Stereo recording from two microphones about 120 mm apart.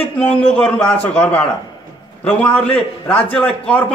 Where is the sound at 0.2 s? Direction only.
10° left (ahead or behind).